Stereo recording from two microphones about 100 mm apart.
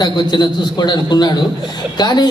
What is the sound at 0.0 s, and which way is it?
A man's voice, 45° left (ahead or behind).